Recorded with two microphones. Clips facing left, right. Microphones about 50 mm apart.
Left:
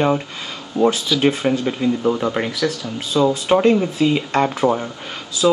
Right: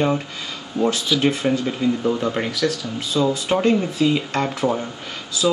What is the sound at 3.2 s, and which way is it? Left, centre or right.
Speech, left.